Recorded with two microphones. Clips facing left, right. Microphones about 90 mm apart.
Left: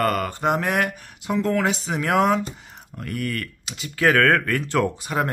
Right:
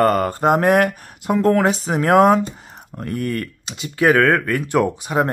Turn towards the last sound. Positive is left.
turn(degrees=-20)  # may be behind; listen again after turning